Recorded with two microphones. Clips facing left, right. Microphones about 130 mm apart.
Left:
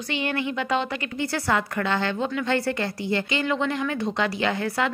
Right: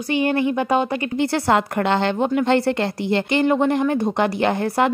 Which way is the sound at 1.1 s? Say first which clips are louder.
Right 6 dB; 65° right (ahead or behind).